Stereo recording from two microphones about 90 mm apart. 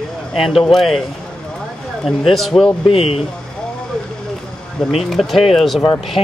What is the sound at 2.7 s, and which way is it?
Speech, 90° left.